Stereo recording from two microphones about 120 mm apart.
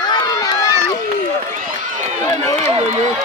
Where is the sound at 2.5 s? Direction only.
25° left (ahead or behind).